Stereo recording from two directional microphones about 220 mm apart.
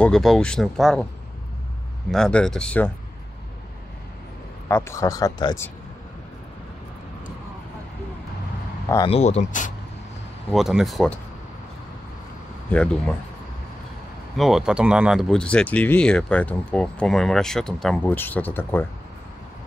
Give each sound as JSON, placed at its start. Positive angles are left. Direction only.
{"t": 0.0, "sound": "speech", "side_deg": 0}
{"t": 2.0, "sound": "speech", "side_deg": 5}
{"t": 4.6, "sound": "speech", "side_deg": 10}
{"t": 8.8, "sound": "a sound", "side_deg": 15}
{"t": 9.1, "sound": "speech", "side_deg": 30}
{"t": 10.5, "sound": "speech", "side_deg": 0}
{"t": 14.3, "sound": "speech", "side_deg": 0}